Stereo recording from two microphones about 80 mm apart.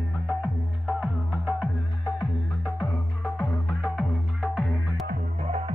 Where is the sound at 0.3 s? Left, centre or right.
Centre.